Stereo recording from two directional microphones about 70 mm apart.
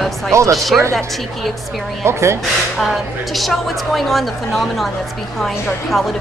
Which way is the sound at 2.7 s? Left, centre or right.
Centre.